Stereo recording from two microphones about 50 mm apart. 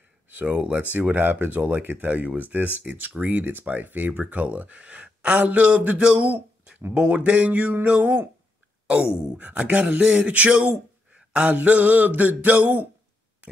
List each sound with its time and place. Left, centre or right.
0.3 s speech: right
9.1 s speech: centre
9.4 s speech: right